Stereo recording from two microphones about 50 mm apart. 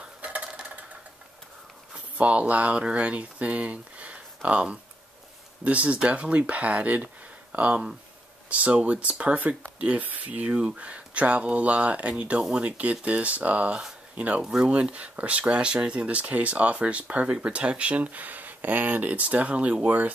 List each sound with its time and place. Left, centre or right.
0.0 s a sound: right
2.1 s speech: right
12.4 s speech: centre
12.6 s speech: right
14.4 s speech: centre
14.7 s speech: right